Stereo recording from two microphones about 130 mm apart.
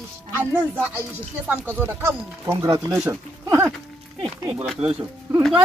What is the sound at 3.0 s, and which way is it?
Speech, 15° right (ahead or behind).